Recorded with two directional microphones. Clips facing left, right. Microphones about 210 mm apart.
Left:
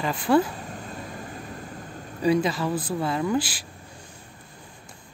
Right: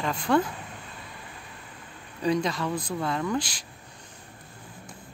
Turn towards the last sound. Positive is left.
turn(degrees=5)  # may be behind; listen again after turning